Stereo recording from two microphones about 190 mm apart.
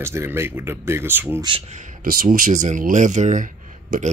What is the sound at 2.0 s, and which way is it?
Speech, 45° right (ahead or behind).